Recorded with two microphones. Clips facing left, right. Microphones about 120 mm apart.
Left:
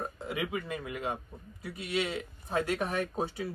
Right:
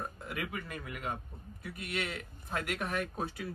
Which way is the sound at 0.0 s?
25° left (ahead or behind).